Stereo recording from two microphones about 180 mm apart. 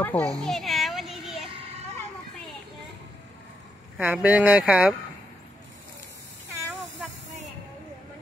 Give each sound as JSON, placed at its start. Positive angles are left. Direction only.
{"t": 0.0, "sound": "children playing", "side_deg": 5}
{"t": 1.5, "sound": "children playing", "side_deg": -30}
{"t": 4.0, "sound": "speech", "side_deg": -10}